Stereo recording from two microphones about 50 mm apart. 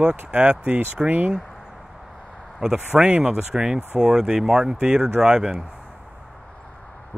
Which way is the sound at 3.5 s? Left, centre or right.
Centre.